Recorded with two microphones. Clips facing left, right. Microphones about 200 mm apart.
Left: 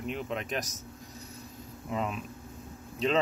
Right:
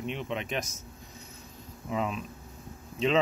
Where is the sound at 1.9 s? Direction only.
Centre (ahead or behind).